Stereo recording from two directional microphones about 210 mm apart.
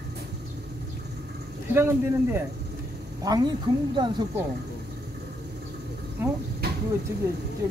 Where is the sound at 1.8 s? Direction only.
10° right (ahead or behind).